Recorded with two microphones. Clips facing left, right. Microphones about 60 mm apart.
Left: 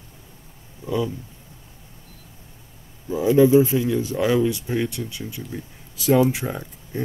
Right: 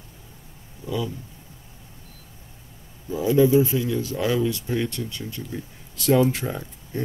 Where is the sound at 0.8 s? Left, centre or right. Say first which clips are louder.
Left 4 dB; left.